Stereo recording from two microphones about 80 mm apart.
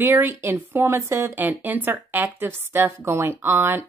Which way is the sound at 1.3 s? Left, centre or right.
Right.